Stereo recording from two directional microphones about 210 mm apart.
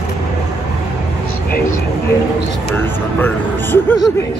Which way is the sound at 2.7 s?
10° left (ahead or behind).